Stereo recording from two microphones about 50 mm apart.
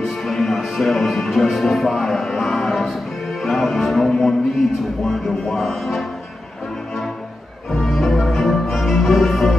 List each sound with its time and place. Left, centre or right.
0.3 s music: centre
7.7 s music: centre